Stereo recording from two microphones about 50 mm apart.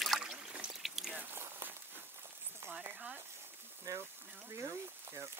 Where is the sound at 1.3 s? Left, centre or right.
Right.